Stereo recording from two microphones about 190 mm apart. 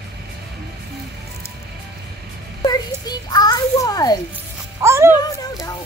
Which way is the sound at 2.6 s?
20° left (ahead or behind).